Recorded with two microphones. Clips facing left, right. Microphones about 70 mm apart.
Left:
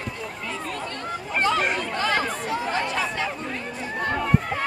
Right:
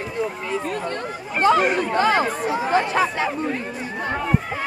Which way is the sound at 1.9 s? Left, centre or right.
Right.